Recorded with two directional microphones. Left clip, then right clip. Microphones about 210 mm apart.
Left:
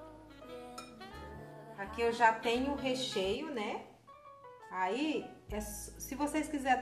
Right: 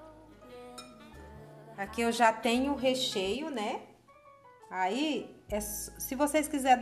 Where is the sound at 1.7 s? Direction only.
50° right (ahead or behind).